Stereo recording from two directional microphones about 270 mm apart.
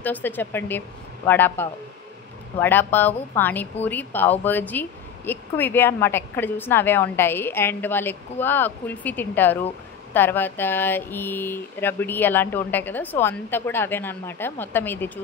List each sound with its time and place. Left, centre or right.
0.0 s a woman's voice: centre